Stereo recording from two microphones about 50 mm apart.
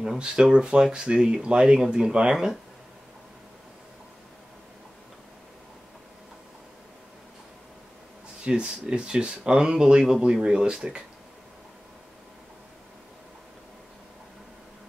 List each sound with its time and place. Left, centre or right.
0.2 s speech: centre
8.5 s speech: centre